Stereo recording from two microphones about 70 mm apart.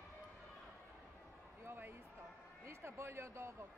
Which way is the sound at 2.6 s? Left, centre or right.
Right.